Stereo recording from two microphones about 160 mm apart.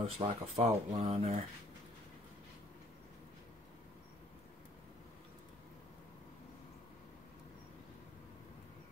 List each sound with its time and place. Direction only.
0.0 s speech: 40° right (ahead or behind)